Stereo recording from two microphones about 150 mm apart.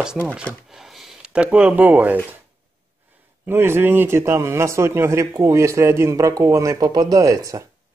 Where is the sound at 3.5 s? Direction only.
15° right (ahead or behind).